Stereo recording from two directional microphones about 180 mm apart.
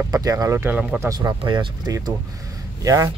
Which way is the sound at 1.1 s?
20° right (ahead or behind).